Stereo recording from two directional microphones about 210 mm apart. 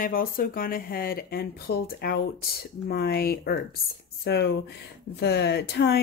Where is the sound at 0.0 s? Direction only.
40° left (ahead or behind).